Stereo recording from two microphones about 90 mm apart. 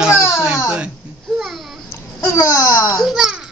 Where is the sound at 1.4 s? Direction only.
Centre (ahead or behind).